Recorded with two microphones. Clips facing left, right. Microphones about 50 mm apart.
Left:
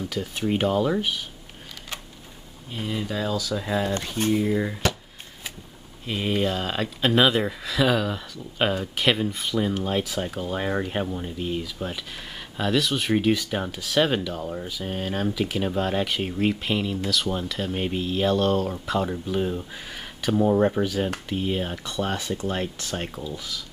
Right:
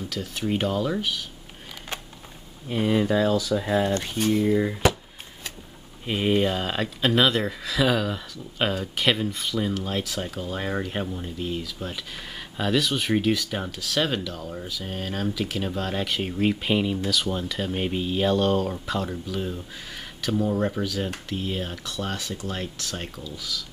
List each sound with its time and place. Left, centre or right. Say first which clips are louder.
0.1 s speech: left 1 dB; centre
2.7 s speech: right 7 dB; right
4.3 s speech: right 2 dB; centre
6.0 s speech: right 2 dB; centre
17.1 s speech: even; centre